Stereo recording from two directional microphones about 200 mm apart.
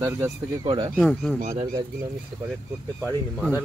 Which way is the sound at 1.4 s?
35° right (ahead or behind).